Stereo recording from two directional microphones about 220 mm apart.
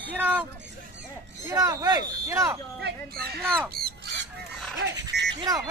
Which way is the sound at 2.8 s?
50° right (ahead or behind).